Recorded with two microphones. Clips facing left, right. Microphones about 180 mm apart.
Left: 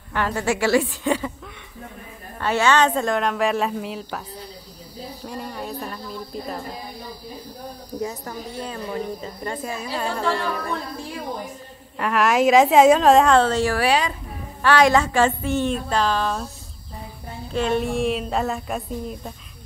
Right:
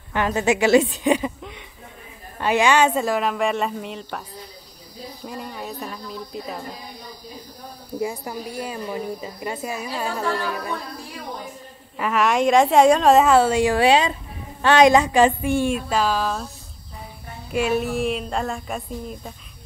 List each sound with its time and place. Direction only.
0.1 s a woman's voice: 20° right (ahead or behind); by 4.2 s centre (ahead or behind)
5.2 s a sound: centre (ahead or behind)
8.0 s a woman's voice: 10° right (ahead or behind)
12.0 s a woman's voice: centre (ahead or behind)
17.5 s speech: 10° right (ahead or behind)